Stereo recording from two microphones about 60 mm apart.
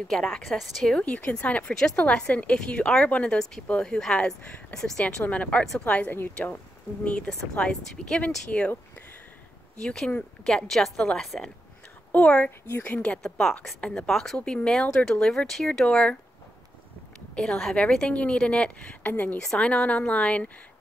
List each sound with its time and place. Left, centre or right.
0.3 s a woman's voice: centre
0.9 s a woman's voice: centre
5.2 s speech: left
7.6 s speech: centre
9.8 s a woman's voice: centre
12.1 s a woman's voice: left
12.4 s a woman's voice: left
12.8 s speech: left
13.2 s a woman's voice: centre
13.7 s a woman's voice: centre
14.0 s a woman's voice: centre
17.4 s a woman's voice: centre; by 19.3 s left
19.3 s a woman's voice: centre